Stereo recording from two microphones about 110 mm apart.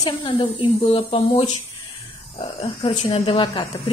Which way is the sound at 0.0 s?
45° left (ahead or behind).